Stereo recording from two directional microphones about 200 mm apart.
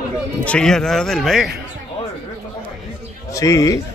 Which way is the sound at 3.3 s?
15° left (ahead or behind).